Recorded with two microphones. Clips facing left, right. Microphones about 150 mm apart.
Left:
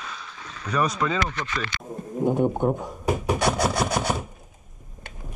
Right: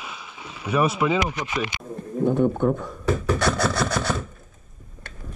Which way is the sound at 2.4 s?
40° left (ahead or behind).